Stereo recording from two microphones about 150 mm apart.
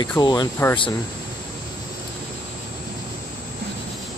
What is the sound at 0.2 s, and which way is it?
Speech, 25° left (ahead or behind).